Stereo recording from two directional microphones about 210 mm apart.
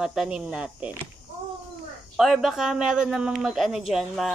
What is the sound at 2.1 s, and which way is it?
A man's voice, centre (ahead or behind).